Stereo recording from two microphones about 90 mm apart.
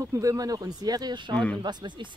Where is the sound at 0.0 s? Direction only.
35° right (ahead or behind); by 1.3 s 55° right (ahead or behind).